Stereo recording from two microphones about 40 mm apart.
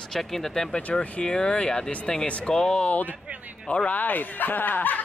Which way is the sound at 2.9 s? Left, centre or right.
Left.